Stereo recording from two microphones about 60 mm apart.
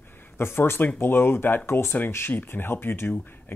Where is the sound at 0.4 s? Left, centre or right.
Left.